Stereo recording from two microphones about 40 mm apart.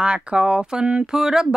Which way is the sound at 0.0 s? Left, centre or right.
Right.